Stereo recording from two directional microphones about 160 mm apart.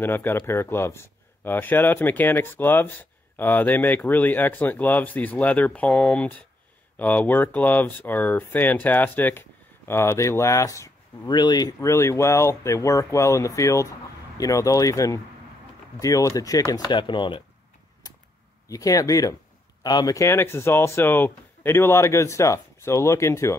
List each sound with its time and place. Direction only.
0.0 s speech: 15° left (ahead or behind); by 17.4 s 30° left (ahead or behind)
18.7 s speech: 20° left (ahead or behind)